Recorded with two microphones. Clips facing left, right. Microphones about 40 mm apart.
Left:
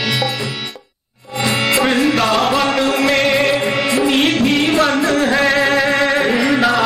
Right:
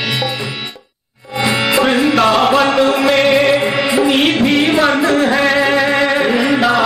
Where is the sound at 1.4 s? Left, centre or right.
Centre.